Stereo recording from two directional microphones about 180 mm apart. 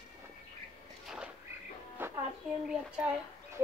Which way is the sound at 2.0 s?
10° right (ahead or behind).